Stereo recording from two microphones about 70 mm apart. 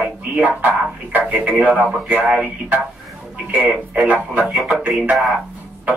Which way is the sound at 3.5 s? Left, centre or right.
Centre.